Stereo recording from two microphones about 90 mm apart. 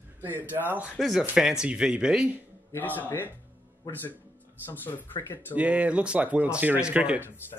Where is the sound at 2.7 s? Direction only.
20° left (ahead or behind).